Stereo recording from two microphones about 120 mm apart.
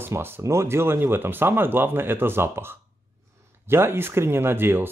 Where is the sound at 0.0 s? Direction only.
20° right (ahead or behind).